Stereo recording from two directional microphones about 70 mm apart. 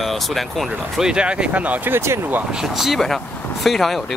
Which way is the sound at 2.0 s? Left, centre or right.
Right.